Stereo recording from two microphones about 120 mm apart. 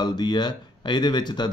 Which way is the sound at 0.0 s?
35° left (ahead or behind).